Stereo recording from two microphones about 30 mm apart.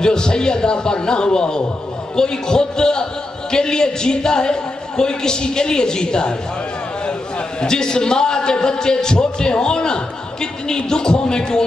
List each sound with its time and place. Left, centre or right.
0.0 s a man's voice: left
7.6 s a man's voice: left